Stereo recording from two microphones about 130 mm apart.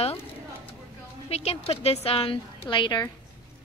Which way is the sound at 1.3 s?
50° left (ahead or behind).